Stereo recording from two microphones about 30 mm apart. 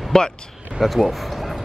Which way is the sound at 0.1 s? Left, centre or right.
Left.